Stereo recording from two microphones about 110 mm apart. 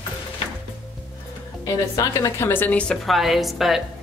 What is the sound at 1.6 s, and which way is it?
A woman's voice, 30° left (ahead or behind).